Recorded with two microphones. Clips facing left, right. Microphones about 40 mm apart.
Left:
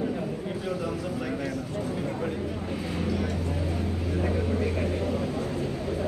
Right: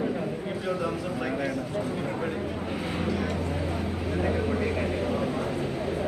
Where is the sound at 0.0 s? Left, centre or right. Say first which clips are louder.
Right 1 dB; centre.